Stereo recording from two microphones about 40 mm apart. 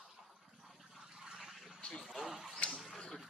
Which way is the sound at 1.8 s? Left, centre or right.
Left.